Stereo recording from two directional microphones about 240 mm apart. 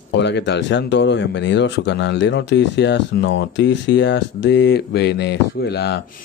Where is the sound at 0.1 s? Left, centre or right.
Left.